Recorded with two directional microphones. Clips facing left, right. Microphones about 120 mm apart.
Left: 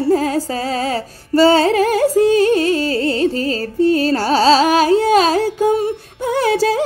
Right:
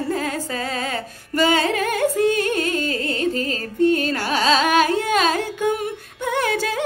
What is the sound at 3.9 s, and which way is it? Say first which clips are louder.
Carnatic music: left 6 dB; 35° left (ahead or behind).